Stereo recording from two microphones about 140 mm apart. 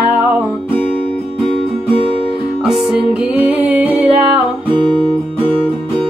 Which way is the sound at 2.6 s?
5° right (ahead or behind).